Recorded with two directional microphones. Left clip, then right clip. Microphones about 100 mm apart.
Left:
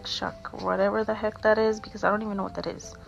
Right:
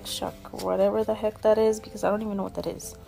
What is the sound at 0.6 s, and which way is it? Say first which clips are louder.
Speech: right 1 dB; 30° right (ahead or behind).